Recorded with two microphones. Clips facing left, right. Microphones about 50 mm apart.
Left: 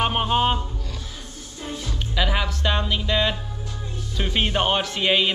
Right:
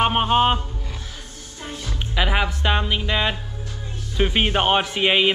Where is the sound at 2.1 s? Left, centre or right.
Right.